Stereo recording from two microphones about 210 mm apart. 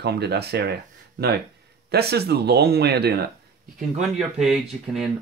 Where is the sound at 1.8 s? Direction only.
50° right (ahead or behind).